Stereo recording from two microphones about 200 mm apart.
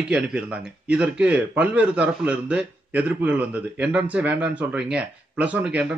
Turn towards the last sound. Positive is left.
turn(degrees=-5)  # may be behind; listen again after turning